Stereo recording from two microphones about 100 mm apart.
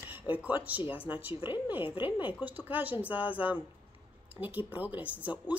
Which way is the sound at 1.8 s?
60° left (ahead or behind).